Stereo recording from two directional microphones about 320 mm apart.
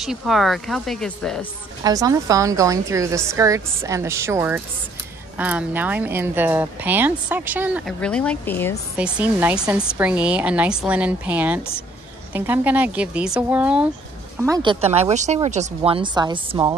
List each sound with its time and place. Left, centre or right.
0.0 s speech: centre
1.8 s a woman's voice: centre
8.9 s a woman's voice: centre